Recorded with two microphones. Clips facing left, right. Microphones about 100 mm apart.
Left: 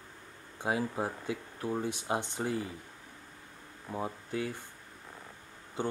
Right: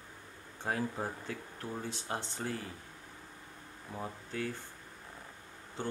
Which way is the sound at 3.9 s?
15° left (ahead or behind).